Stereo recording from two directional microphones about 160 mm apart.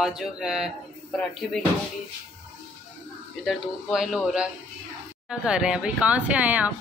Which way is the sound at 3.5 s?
Centre (ahead or behind).